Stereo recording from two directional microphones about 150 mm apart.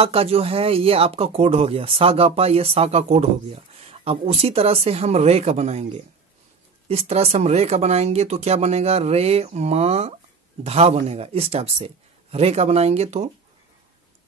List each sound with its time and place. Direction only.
0.0 s speech: 40° right (ahead or behind)